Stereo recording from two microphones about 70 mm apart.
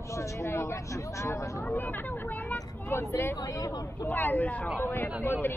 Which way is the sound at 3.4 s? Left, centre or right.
Left.